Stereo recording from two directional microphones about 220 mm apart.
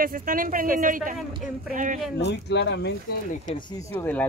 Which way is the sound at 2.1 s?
50° left (ahead or behind).